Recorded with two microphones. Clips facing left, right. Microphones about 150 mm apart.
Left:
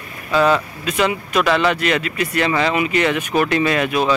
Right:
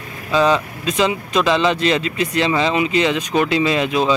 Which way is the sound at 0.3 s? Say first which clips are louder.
Even; 20° right (ahead or behind).